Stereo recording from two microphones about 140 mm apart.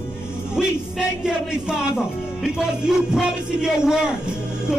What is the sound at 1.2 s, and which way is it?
Speech, 5° right (ahead or behind).